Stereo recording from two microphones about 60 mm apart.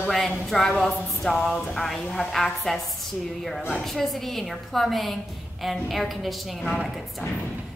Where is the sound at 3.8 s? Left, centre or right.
Centre.